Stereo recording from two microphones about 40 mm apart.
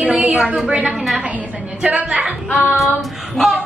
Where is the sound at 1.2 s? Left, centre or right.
Right.